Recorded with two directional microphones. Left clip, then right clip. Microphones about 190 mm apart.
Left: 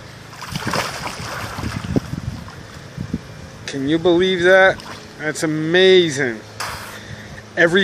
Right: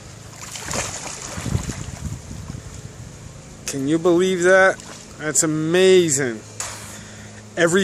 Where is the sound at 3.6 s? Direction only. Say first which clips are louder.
Left 2 dB; 10° right (ahead or behind).